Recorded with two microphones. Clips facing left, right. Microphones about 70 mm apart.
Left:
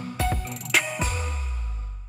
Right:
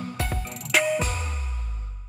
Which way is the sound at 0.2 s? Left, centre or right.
Centre.